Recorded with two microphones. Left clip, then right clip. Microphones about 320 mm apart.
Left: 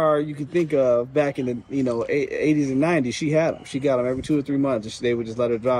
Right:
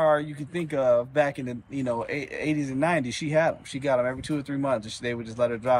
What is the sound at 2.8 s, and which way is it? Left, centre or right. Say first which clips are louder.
Speech: left 4 dB; centre.